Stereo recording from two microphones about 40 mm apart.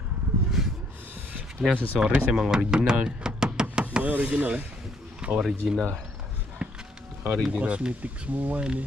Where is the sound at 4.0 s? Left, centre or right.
Right.